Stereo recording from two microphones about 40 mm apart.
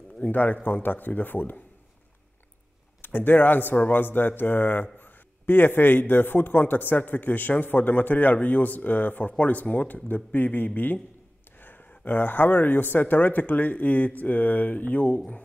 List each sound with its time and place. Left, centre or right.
0.3 s speech: left
3.0 s speech: left
12.0 s speech: left